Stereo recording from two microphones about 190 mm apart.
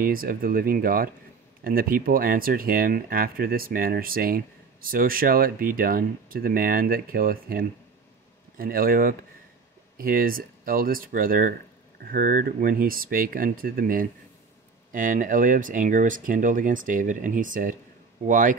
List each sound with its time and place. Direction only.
0.0 s speech: 50° right (ahead or behind)